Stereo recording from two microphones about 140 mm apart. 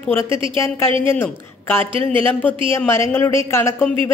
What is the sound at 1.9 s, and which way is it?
Speech, 40° right (ahead or behind).